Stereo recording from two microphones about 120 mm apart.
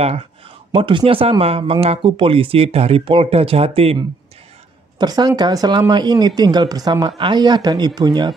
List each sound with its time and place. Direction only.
0.7 s speech: 45° right (ahead or behind)
4.9 s speech: 35° right (ahead or behind)